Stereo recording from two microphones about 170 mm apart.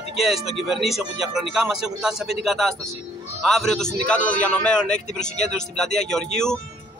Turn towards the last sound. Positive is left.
turn(degrees=5)  # may be behind; listen again after turning